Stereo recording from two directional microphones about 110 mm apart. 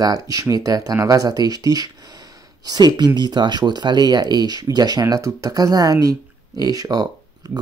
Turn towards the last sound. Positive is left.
turn(degrees=-35)  # may be behind; listen again after turning